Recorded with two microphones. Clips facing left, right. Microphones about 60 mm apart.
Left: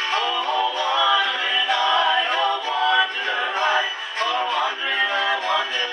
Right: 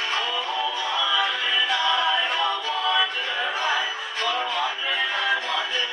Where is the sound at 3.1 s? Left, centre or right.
Left.